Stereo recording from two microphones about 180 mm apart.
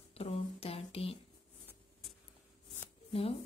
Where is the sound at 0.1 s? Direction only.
35° left (ahead or behind).